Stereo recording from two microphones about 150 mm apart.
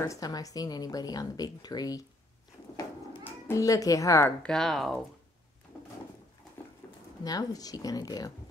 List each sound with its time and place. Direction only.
0.0 s a woman's voice: 25° left (ahead or behind)
3.4 s a woman's voice: 20° left (ahead or behind)
4.4 s speech: 5° left (ahead or behind)
6.8 s a sound: 15° left (ahead or behind)
7.2 s a woman's voice: 25° left (ahead or behind)